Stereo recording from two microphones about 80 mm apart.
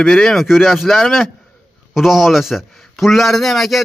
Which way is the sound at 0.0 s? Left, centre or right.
Centre.